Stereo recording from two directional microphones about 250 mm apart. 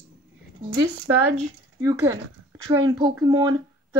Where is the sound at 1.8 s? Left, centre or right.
Centre.